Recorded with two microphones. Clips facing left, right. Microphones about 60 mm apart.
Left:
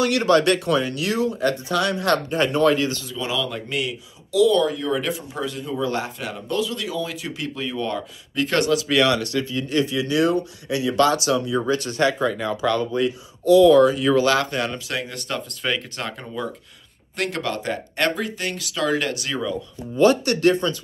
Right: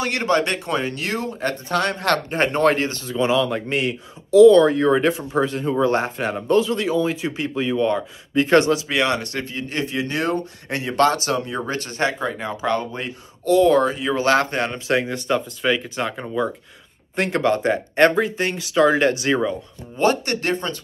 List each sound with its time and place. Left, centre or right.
0.0 s a man's voice: right
13.9 s speech: right
15.6 s speech: centre
17.1 s a man's voice: right